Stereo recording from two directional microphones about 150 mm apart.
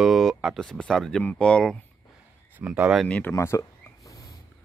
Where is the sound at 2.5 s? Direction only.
10° right (ahead or behind).